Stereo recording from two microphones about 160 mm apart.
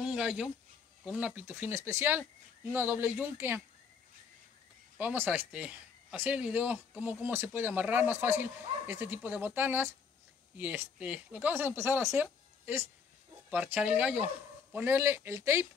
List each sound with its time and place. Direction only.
0.0 s a sound: 5° right (ahead or behind)
1.0 s speech: 10° right (ahead or behind)
4.9 s speech: 10° right (ahead or behind)